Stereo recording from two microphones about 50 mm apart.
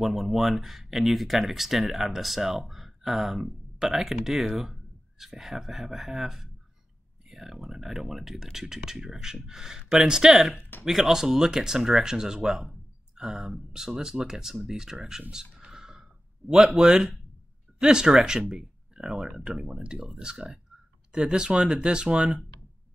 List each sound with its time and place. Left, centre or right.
0.0 s speech: centre
15.7 s a sound: centre
17.7 s speech: centre